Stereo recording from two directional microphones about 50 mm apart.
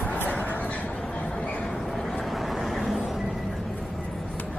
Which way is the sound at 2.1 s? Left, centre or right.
Centre.